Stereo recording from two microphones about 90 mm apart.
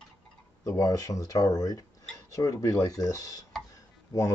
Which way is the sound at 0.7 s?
40° left (ahead or behind).